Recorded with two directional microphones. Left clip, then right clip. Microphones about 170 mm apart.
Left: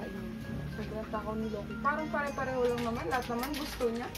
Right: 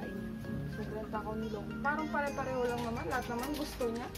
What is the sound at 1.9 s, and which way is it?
Speech, centre (ahead or behind).